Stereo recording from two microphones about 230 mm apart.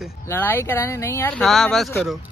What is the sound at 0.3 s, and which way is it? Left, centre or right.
Speech, centre.